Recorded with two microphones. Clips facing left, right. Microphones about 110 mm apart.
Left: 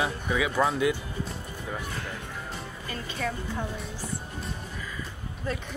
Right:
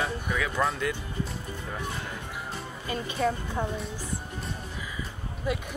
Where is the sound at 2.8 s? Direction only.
20° right (ahead or behind).